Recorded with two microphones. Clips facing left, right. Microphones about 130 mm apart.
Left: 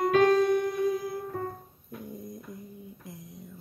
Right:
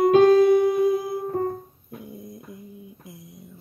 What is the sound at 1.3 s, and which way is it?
Music, 40° right (ahead or behind).